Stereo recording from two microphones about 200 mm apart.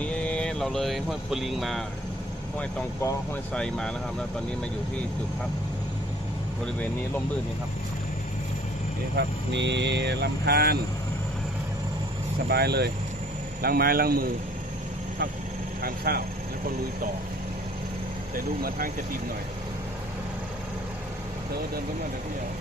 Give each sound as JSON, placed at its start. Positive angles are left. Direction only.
{"t": 0.0, "sound": "speech", "side_deg": 5}
{"t": 3.0, "sound": "speech", "side_deg": 10}
{"t": 9.1, "sound": "speech", "side_deg": -60}
{"t": 12.4, "sound": "speech", "side_deg": -55}
{"t": 15.8, "sound": "speech", "side_deg": -50}
{"t": 18.3, "sound": "speech", "side_deg": -45}